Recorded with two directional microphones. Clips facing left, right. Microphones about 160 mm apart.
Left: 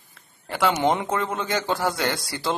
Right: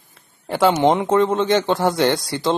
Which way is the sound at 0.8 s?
20° right (ahead or behind).